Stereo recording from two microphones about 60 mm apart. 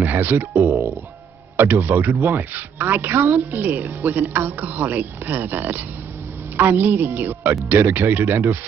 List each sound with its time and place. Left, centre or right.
0.0 s speech: right
1.6 s speech: right